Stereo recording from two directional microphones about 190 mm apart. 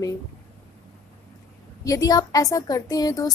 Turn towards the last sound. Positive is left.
turn(degrees=20)  # may be behind; listen again after turning